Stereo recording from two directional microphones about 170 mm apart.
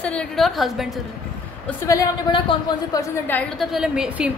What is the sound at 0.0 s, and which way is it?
A woman's voice, 5° left (ahead or behind).